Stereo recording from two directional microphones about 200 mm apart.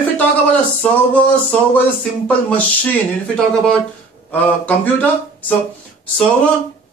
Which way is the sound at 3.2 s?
5° left (ahead or behind).